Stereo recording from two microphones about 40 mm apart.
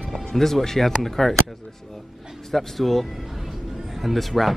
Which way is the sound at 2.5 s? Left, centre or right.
Centre.